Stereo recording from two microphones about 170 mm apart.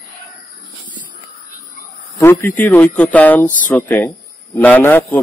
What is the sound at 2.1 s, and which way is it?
A man's voice, 15° left (ahead or behind).